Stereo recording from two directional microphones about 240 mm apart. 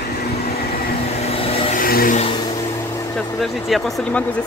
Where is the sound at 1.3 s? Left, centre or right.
Left.